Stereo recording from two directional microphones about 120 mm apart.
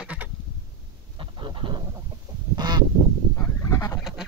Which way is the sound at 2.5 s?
35° right (ahead or behind).